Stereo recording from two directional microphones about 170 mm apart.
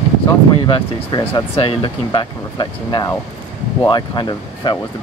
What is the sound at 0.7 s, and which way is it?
Speech, 25° left (ahead or behind).